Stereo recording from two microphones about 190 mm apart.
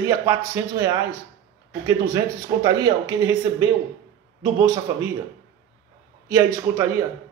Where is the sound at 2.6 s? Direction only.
20° right (ahead or behind).